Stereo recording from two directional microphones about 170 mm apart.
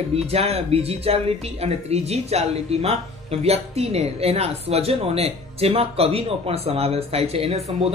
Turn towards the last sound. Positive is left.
turn(degrees=-35)  # may be behind; listen again after turning